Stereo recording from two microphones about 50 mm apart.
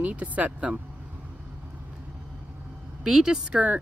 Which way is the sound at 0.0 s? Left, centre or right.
Right.